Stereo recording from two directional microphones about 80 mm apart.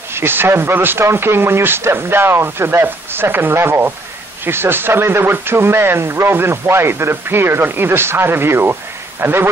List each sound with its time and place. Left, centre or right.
0.1 s speech: right